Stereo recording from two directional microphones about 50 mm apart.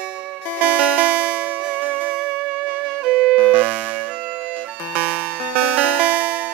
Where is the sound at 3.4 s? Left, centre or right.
Right.